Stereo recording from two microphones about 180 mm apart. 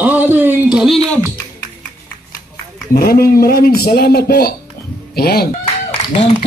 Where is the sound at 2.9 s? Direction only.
55° left (ahead or behind).